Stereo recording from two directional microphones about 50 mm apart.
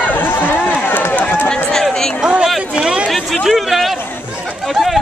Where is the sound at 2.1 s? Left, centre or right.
Centre.